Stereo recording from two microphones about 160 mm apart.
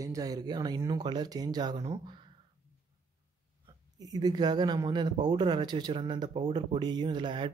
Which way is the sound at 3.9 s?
25° right (ahead or behind).